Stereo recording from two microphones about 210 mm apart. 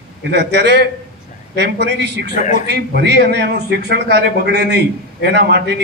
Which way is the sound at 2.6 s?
55° right (ahead or behind).